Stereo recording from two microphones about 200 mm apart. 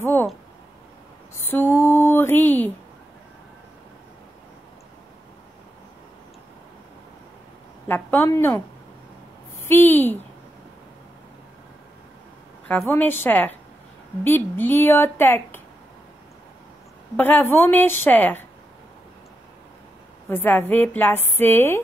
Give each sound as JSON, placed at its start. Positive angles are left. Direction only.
{"t": 0.0, "sound": "a sound", "side_deg": 10}
{"t": 1.5, "sound": "a sound", "side_deg": 10}
{"t": 7.9, "sound": "a woman's voice", "side_deg": 10}
{"t": 9.7, "sound": "a woman's voice", "side_deg": 10}
{"t": 12.6, "sound": "a woman's voice", "side_deg": 10}
{"t": 17.2, "sound": "a woman's voice", "side_deg": 10}
{"t": 20.2, "sound": "a woman's voice", "side_deg": 10}